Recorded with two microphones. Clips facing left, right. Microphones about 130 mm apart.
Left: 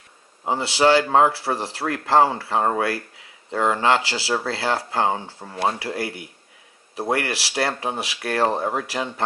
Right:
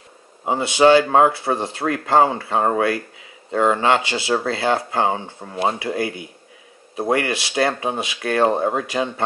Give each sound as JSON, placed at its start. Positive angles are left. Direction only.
{"t": 0.5, "sound": "speech", "side_deg": -20}